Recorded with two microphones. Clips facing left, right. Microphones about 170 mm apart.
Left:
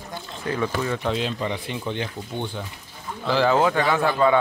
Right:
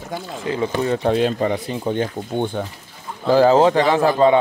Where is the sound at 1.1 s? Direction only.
50° right (ahead or behind).